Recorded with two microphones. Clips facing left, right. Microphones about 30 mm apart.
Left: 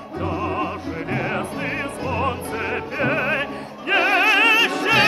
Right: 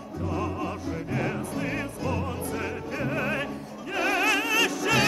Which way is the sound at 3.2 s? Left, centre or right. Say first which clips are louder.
Left 6 dB; left.